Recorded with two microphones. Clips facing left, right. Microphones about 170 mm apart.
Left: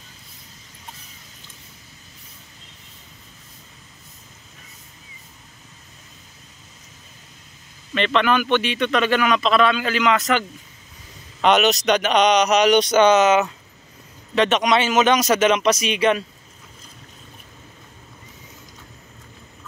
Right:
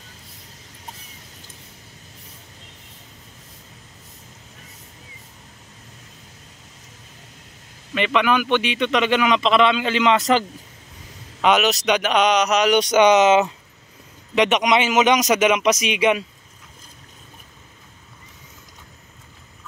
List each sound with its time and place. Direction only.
7.9 s a man's voice: 10° right (ahead or behind); by 10.4 s 30° right (ahead or behind)
11.4 s speech: 5° right (ahead or behind)
12.8 s a man's voice: 15° right (ahead or behind)